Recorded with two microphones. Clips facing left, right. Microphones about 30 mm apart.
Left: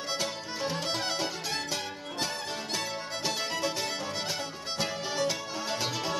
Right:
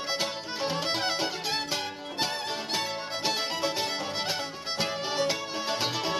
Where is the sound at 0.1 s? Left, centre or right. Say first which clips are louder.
Right 2 dB; right.